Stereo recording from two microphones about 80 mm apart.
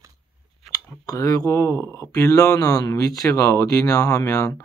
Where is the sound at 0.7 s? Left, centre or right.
Left.